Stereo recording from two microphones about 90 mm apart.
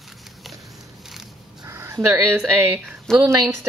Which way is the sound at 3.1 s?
5° left (ahead or behind).